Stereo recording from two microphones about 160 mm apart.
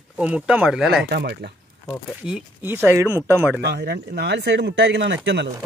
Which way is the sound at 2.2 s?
10° right (ahead or behind).